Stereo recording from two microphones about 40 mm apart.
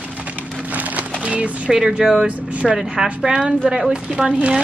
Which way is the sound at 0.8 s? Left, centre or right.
Right.